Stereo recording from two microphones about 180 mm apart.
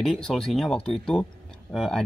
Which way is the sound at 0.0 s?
Centre (ahead or behind).